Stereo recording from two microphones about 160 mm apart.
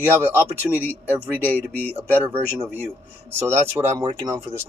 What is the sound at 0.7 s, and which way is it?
Speech, centre (ahead or behind).